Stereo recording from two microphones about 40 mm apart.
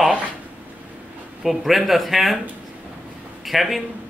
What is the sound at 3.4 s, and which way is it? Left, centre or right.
Speech, centre.